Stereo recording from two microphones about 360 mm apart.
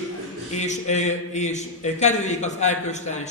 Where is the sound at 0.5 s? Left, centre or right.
Centre.